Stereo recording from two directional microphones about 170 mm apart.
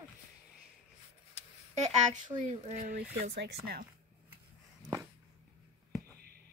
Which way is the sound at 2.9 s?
70° right (ahead or behind).